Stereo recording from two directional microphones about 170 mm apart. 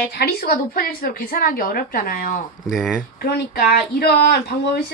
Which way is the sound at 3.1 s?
65° left (ahead or behind).